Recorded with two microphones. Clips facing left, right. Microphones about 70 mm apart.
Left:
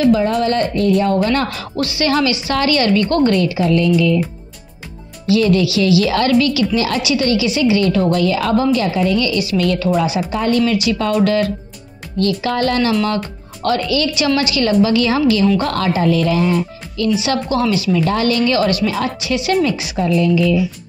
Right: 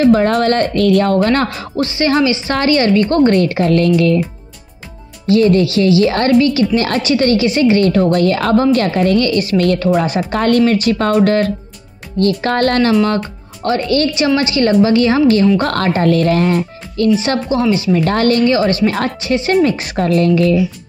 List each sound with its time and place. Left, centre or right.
0.2 s speech: right
0.7 s speech: right
1.0 s speech: right
1.6 s a woman's voice: right
3.3 s speech: right
5.2 s a woman's voice: right
10.6 s a woman's voice: right
13.6 s a woman's voice: right
14.1 s a woman's voice: right
17.5 s a woman's voice: right
17.9 s speech: right
18.4 s a woman's voice: right